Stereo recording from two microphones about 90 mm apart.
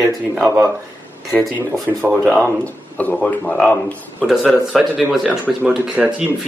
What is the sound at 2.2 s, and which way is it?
Speech, 10° left (ahead or behind).